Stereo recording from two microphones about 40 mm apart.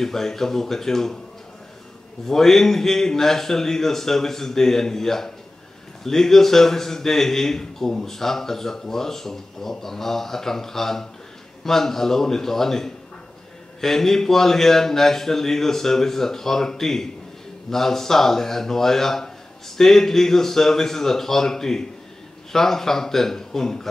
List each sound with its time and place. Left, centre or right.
0.0 s a man's voice: centre
2.2 s a man's voice: centre